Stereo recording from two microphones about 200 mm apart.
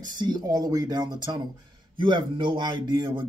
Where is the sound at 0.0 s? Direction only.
20° right (ahead or behind).